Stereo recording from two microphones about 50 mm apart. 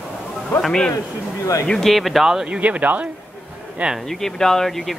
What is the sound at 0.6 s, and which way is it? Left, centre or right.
A man's voice, centre.